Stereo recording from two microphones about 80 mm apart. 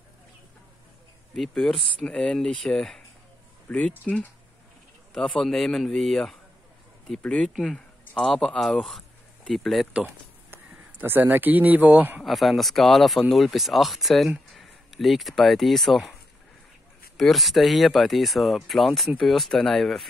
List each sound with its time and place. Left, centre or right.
1.3 s speech: centre
3.6 s speech: centre
5.1 s speech: centre
9.9 s speech: right
12.2 s speech: centre
17.2 s speech: centre